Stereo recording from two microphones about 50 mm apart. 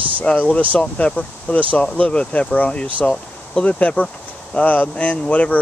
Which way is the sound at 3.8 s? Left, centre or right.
Left.